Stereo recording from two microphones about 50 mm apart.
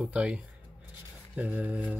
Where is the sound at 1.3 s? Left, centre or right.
Right.